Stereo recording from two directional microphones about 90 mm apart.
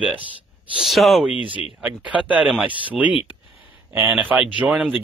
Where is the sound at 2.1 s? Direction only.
15° right (ahead or behind).